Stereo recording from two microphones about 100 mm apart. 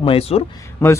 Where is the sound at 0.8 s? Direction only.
25° left (ahead or behind).